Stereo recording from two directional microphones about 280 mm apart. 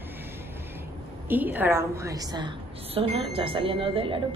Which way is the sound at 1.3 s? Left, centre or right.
Centre.